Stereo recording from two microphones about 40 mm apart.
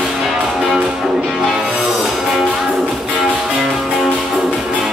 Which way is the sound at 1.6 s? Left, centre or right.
Centre.